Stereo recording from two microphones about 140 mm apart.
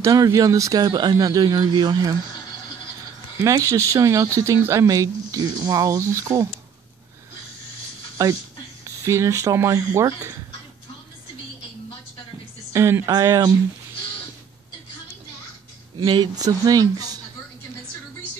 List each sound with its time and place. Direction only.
0.0 s speech: 25° right (ahead or behind)
3.3 s speech: 20° right (ahead or behind)
8.2 s speech: 20° right (ahead or behind)
12.7 s speech: 20° right (ahead or behind)
16.0 s speech: 30° right (ahead or behind)